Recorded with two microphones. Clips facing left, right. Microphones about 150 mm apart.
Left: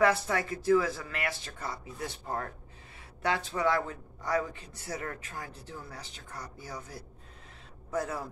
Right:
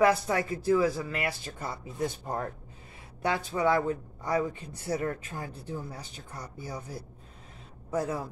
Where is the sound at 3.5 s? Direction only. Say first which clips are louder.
Right 3 dB; 15° right (ahead or behind).